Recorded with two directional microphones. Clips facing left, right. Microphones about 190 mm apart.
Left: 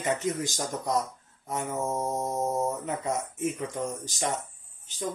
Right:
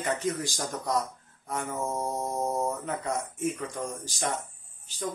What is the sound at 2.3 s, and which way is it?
Speech, centre (ahead or behind).